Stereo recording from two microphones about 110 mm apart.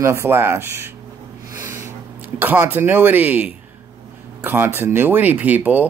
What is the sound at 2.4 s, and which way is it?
Speech, 20° right (ahead or behind).